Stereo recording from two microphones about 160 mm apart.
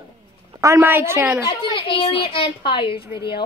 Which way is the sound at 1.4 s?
35° left (ahead or behind).